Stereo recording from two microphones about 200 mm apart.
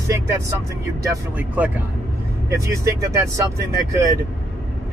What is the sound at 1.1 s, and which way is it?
Speech, 10° right (ahead or behind).